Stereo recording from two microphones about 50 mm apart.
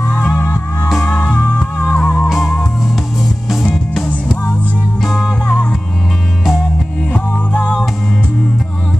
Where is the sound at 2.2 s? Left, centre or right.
Centre.